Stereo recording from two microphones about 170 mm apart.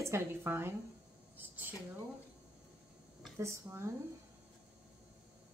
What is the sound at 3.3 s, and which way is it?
Speech, 15° right (ahead or behind).